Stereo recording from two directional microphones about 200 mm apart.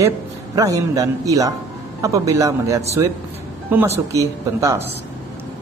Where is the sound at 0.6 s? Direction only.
15° right (ahead or behind).